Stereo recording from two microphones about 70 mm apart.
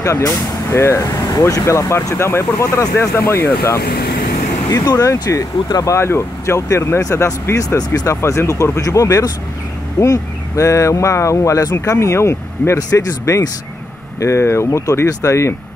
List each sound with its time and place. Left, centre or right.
0.0 s speech: left
2.7 s speech: left
3.0 s speech: left
4.6 s speech: left
5.9 s speech: left
8.1 s speech: left